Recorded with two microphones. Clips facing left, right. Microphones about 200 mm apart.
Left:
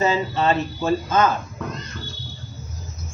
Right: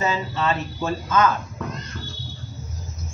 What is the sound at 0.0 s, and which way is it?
Speech, 30° left (ahead or behind).